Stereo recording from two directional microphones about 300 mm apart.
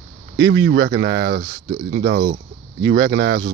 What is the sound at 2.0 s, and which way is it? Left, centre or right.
Speech, right.